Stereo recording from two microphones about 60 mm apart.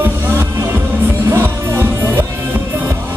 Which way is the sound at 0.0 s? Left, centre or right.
Right.